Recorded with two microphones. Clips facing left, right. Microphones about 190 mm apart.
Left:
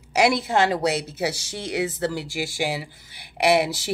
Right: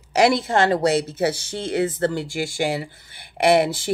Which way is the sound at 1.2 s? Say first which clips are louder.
Right 4 dB; 55° right (ahead or behind).